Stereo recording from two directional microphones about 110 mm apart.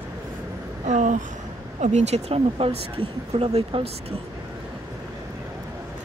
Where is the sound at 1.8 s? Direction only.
90° right; by 3.9 s 60° right (ahead or behind).